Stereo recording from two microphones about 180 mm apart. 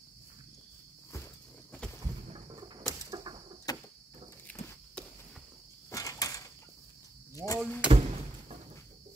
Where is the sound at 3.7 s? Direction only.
20° left (ahead or behind).